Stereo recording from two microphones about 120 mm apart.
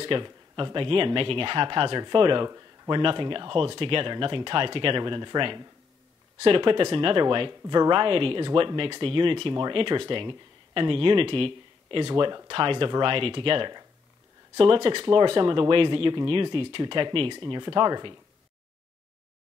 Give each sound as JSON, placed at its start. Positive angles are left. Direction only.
{"t": 0.0, "sound": "speech", "side_deg": -45}
{"t": 3.0, "sound": "speech", "side_deg": -45}